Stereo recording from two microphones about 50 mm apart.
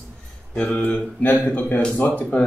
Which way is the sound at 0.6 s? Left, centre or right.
Left.